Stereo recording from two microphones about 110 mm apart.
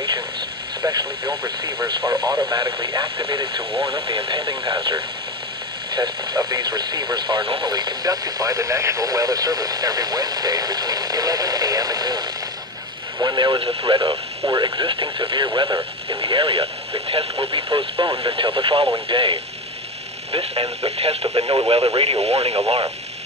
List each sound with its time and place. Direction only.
0.8 s speech: 30° right (ahead or behind); by 19.4 s 50° right (ahead or behind)
20.8 s speech: 65° right (ahead or behind)